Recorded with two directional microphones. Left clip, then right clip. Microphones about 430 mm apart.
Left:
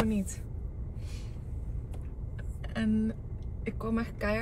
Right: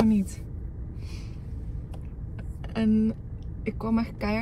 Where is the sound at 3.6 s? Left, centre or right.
Centre.